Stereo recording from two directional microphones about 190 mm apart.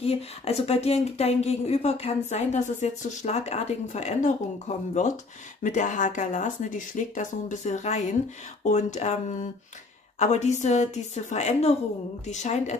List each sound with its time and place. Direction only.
0.0 s speech: 30° left (ahead or behind)